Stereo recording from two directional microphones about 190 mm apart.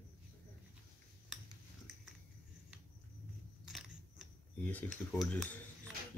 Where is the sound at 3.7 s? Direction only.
Centre (ahead or behind).